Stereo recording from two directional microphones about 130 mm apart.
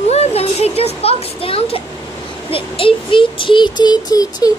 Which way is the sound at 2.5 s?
45° left (ahead or behind).